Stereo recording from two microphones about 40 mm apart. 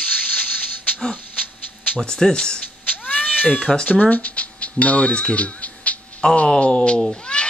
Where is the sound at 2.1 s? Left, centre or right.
Centre.